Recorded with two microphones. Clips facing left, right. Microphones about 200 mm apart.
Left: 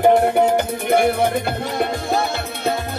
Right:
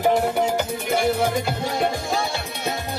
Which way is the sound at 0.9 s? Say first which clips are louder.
Left 5 dB; 55° left (ahead or behind).